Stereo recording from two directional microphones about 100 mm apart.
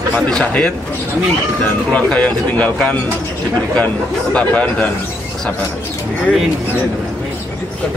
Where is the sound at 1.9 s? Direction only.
10° left (ahead or behind).